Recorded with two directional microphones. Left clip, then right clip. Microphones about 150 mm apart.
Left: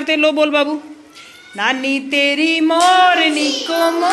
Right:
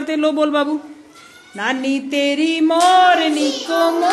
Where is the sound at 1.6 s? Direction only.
25° right (ahead or behind).